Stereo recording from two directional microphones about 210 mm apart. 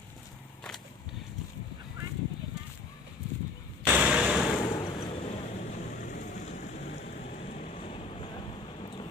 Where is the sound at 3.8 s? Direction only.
5° right (ahead or behind).